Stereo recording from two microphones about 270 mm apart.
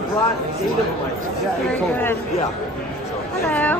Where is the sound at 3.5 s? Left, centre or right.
Centre.